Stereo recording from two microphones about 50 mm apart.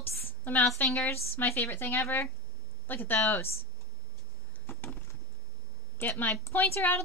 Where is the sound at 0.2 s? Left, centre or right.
Left.